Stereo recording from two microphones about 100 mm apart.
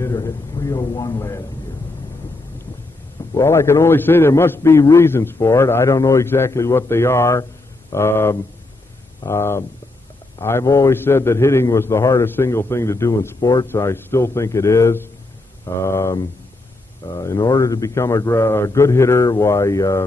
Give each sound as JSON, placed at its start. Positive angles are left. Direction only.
{"t": 0.0, "sound": "a man's voice", "side_deg": 35}
{"t": 3.3, "sound": "a man's voice", "side_deg": 25}
{"t": 13.7, "sound": "a man's voice", "side_deg": 25}